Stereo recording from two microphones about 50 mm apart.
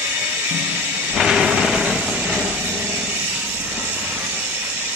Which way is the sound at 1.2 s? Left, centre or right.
Centre.